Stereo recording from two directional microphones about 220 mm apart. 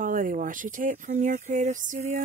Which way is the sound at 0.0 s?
35° right (ahead or behind).